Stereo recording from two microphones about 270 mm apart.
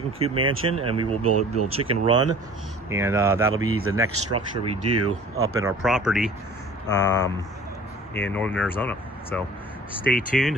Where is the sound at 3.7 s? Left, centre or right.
Right.